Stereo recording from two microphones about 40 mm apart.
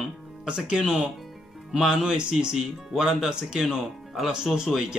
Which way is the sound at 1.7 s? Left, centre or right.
Centre.